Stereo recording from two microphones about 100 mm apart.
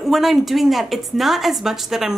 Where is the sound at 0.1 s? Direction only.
Centre (ahead or behind).